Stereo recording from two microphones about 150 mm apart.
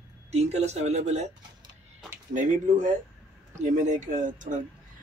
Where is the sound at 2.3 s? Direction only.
55° right (ahead or behind).